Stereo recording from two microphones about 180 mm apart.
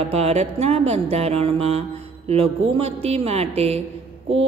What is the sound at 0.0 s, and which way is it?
A man's voice, 35° right (ahead or behind).